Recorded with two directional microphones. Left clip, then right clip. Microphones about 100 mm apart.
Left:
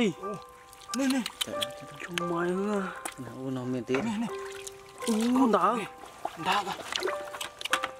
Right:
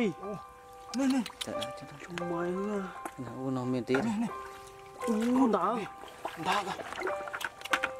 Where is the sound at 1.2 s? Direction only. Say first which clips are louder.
Left 4 dB; 20° left (ahead or behind).